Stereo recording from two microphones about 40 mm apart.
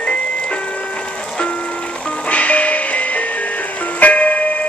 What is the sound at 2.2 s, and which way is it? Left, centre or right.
Music, left.